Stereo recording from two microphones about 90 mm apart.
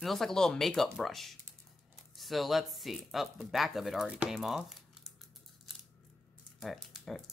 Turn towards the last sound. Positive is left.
turn(degrees=0)  # may be behind; listen again after turning